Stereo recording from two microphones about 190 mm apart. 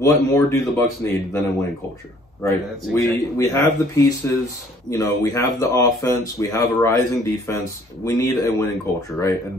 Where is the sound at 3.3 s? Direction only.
15° left (ahead or behind).